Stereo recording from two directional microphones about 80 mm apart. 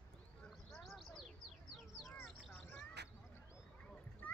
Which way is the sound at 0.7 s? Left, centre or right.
Centre.